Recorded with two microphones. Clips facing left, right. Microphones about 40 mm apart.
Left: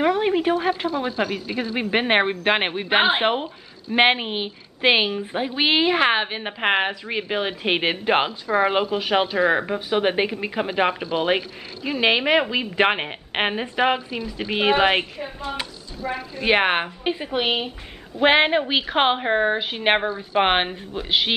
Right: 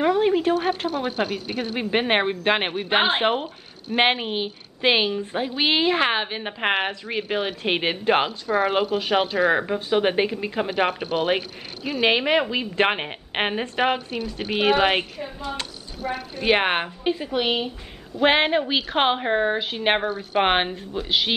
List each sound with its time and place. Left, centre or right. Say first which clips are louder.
0.0 s a sound: even; centre
0.9 s speech: left 1 dB; left
1.8 s a woman's voice: left 2 dB; centre
8.3 s a woman's voice: left 2 dB; left; by 10.7 s centre
11.2 s speech: left 1 dB; left
12.0 s a woman's voice: left 1 dB; centre
14.5 s a woman's voice: left 1 dB; centre
16.4 s a woman's voice: left 1 dB; centre
17.0 s a woman's voice: even; centre